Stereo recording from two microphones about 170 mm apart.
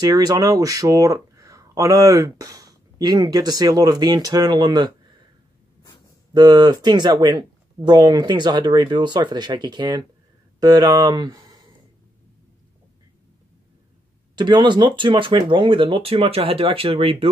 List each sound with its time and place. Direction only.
0.0 s speech: 20° right (ahead or behind)
6.3 s speech: 25° right (ahead or behind)
14.3 s speech: 25° right (ahead or behind)